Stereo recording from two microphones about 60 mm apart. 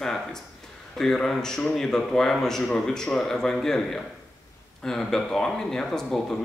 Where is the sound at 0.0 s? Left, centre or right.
Centre.